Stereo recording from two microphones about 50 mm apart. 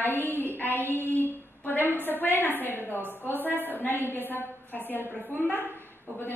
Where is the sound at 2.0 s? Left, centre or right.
Left.